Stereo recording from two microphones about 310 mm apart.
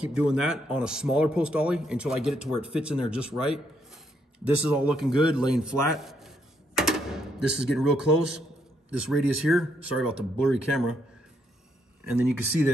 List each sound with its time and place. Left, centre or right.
0.0 s a man's voice: centre
12.0 s a man's voice: centre